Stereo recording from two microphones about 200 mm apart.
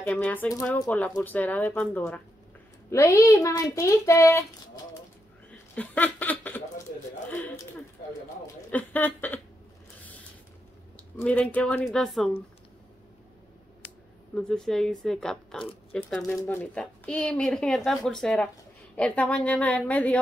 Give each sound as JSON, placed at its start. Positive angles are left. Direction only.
{"t": 0.0, "sound": "speech", "side_deg": 10}
{"t": 5.8, "sound": "speech", "side_deg": 10}
{"t": 8.6, "sound": "speech", "side_deg": 10}
{"t": 11.1, "sound": "a woman's voice", "side_deg": 5}
{"t": 14.3, "sound": "a woman's voice", "side_deg": 5}